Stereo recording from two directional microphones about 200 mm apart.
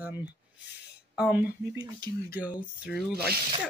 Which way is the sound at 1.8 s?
20° right (ahead or behind).